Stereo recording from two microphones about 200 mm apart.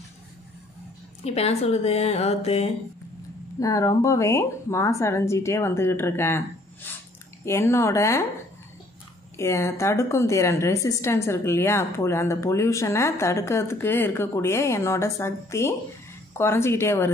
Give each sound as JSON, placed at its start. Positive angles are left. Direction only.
{"t": 1.2, "sound": "speech", "side_deg": 30}
{"t": 3.5, "sound": "a woman's voice", "side_deg": 15}
{"t": 9.4, "sound": "a woman's voice", "side_deg": 15}